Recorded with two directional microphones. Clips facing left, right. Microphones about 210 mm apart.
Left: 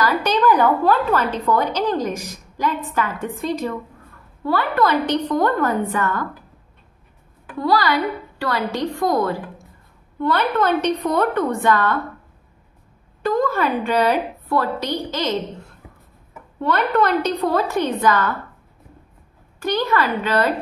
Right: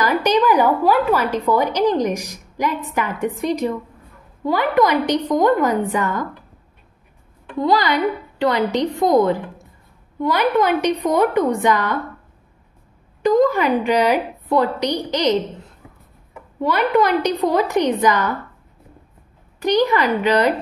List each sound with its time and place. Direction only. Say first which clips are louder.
0.0 s a woman's voice: right 2 dB; 15° right (ahead or behind)
7.5 s a woman's voice: right 1 dB; 20° right (ahead or behind)
13.2 s a woman's voice: right 5 dB; 15° right (ahead or behind)
16.5 s a woman's voice: right 2 dB; 10° right (ahead or behind)
19.6 s a woman's voice: right 4 dB; 15° right (ahead or behind)